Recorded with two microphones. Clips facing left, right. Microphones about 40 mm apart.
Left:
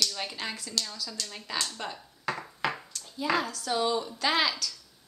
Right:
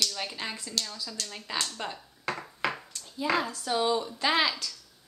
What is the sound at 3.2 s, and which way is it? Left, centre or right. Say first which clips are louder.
A woman's voice: even; centre.